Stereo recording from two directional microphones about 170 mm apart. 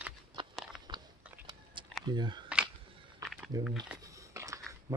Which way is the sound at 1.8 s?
30° right (ahead or behind).